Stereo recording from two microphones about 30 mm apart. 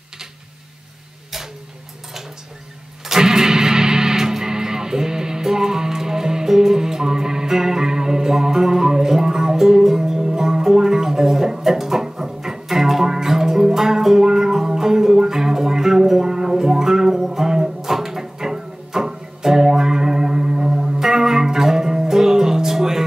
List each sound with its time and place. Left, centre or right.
3.1 s music: centre